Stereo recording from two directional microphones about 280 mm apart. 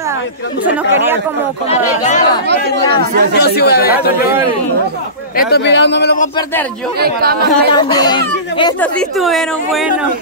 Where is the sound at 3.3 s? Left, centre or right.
Left.